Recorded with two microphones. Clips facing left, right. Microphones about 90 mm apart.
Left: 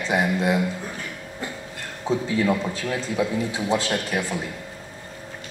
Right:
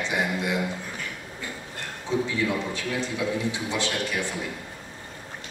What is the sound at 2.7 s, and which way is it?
A man's voice, 40° left (ahead or behind).